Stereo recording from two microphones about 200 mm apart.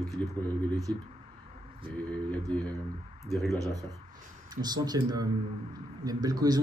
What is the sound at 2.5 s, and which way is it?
Speech, 5° left (ahead or behind).